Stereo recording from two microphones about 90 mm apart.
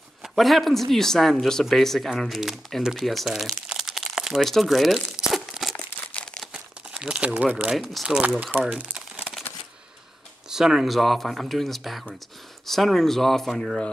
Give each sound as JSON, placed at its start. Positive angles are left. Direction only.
{"t": 0.2, "sound": "speech", "side_deg": 0}
{"t": 5.8, "sound": "crumpling", "side_deg": 15}
{"t": 6.4, "sound": "crumpling", "side_deg": -10}
{"t": 7.6, "sound": "speech", "side_deg": -15}
{"t": 8.4, "sound": "speech", "side_deg": -20}
{"t": 8.9, "sound": "crumpling", "side_deg": -10}
{"t": 10.5, "sound": "speech", "side_deg": -5}